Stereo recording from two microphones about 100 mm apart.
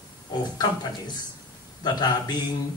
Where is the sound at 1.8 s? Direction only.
45° left (ahead or behind).